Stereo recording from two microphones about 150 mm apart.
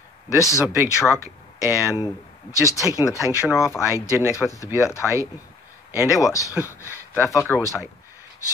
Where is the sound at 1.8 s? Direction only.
25° left (ahead or behind).